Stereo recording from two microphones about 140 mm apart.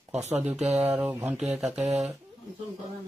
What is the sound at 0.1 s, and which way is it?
Speech, 55° right (ahead or behind).